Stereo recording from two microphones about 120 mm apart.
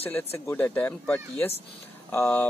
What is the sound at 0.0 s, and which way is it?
Speech, 15° left (ahead or behind).